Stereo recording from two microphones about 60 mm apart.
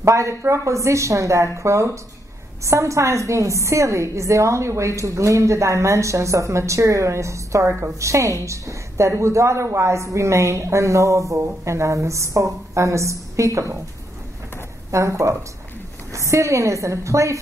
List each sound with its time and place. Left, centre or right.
0.0 s a woman's voice: right
14.9 s a woman's voice: right